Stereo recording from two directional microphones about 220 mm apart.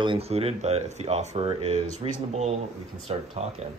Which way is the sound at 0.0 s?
25° right (ahead or behind).